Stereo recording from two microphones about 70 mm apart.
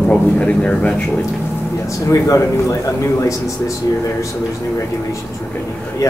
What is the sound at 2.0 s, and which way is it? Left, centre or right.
Speech, left.